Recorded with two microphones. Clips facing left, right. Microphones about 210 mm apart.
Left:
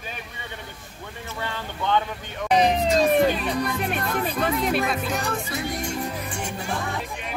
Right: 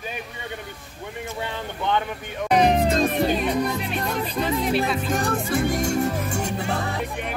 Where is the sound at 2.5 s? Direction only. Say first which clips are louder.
Right 1 dB; 55° right (ahead or behind).